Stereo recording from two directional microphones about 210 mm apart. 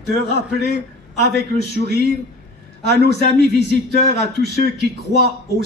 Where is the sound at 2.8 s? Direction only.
50° left (ahead or behind).